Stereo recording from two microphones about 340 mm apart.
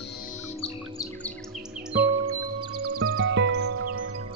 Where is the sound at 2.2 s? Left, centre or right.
Right.